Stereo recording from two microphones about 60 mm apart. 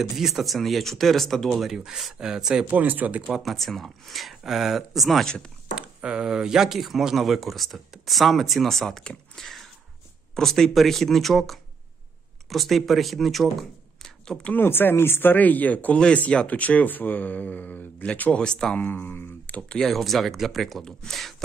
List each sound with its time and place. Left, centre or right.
0.2 s speech: centre
2.7 s speech: right
3.2 s speech: centre
3.4 s speech: centre
5.9 s a sound: right
6.2 s speech: centre
14.5 s speech: left
15.3 s speech: left
18.8 s speech: left
19.8 s speech: centre